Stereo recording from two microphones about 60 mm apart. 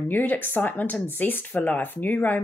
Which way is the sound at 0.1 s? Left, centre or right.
Left.